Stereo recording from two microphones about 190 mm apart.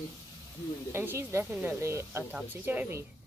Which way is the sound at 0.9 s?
10° right (ahead or behind).